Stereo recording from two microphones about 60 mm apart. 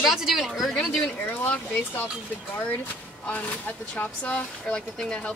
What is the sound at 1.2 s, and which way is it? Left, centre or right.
Speech, left.